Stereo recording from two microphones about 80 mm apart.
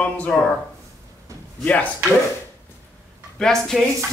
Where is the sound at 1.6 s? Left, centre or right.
Centre.